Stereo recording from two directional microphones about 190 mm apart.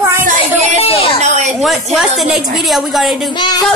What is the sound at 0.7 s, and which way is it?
Speech, 30° left (ahead or behind).